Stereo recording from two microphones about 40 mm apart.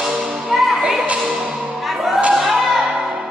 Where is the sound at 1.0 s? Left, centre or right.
Right.